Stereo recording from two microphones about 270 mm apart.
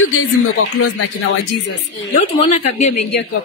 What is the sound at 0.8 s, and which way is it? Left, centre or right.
Speech, left.